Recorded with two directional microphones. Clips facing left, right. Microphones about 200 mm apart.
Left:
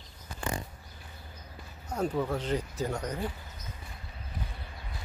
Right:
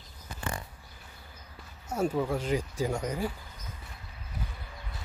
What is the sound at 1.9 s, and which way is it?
Speech, 10° right (ahead or behind).